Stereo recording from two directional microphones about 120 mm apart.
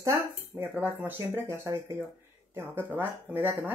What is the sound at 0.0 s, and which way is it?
Speech, 20° right (ahead or behind).